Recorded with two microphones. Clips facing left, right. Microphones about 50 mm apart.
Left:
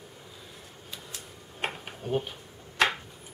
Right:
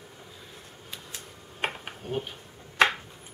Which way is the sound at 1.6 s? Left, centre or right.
Centre.